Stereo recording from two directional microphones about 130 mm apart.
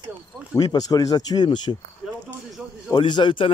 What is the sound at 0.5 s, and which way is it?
Speech, 30° left (ahead or behind).